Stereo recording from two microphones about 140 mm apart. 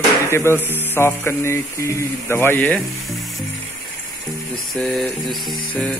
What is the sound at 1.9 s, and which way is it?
Speech, 20° left (ahead or behind).